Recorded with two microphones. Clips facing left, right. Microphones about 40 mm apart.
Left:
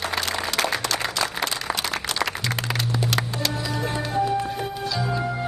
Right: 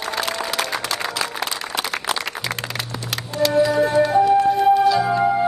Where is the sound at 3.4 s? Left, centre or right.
Centre.